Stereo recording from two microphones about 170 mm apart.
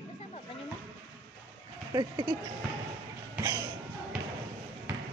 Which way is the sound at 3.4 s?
20° right (ahead or behind).